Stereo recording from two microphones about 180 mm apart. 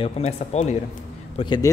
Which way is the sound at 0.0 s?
30° left (ahead or behind).